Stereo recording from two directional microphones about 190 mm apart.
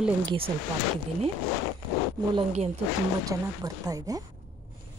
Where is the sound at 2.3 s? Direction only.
35° right (ahead or behind).